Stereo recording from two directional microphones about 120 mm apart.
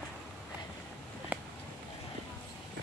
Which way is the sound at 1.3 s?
10° right (ahead or behind).